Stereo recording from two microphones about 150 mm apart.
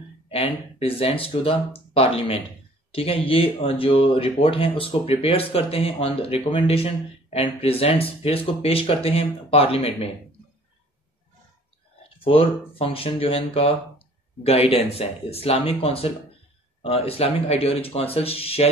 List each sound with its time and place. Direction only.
0.3 s speech: 40° left (ahead or behind)
12.2 s speech: 40° left (ahead or behind)